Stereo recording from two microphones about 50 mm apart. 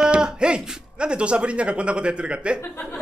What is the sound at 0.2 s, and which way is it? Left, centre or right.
Speech, centre.